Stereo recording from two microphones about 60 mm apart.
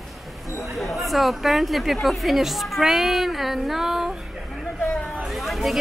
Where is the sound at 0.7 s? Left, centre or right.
Centre.